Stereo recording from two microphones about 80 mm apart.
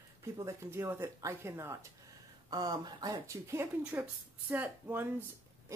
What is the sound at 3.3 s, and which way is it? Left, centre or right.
Speech, right.